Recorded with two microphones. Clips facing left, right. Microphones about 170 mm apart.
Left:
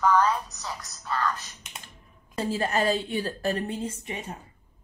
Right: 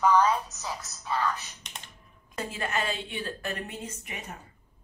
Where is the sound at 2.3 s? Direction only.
35° left (ahead or behind).